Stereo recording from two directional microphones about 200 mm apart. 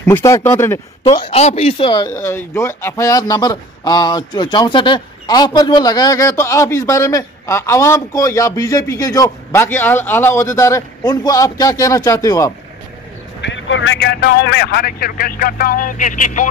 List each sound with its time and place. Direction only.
0.0 s a man's voice: 15° left (ahead or behind)
1.0 s speech: 25° left (ahead or behind)
2.1 s a man's voice: 15° left (ahead or behind)
13.4 s vehicle: 65° left (ahead or behind)
13.9 s speech: 55° left (ahead or behind)